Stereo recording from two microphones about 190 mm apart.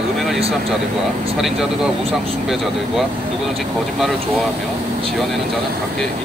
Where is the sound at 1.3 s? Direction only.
Centre (ahead or behind).